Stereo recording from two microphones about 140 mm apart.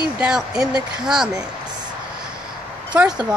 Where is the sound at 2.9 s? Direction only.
5° right (ahead or behind).